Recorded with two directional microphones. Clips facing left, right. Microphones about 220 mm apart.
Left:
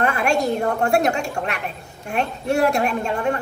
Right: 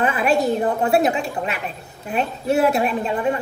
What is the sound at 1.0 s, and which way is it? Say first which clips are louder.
A woman's voice: right 1 dB; centre (ahead or behind).